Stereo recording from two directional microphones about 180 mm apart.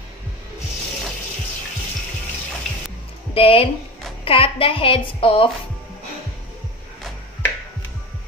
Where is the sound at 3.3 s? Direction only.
30° left (ahead or behind).